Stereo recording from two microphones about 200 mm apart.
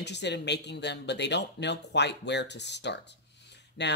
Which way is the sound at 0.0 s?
60° left (ahead or behind).